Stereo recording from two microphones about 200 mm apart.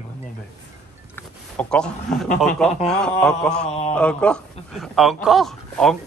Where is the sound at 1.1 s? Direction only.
5° left (ahead or behind).